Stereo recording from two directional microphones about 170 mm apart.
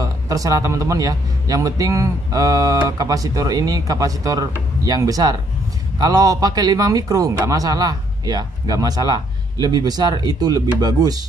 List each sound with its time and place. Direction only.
0.0 s a man's voice: 20° right (ahead or behind)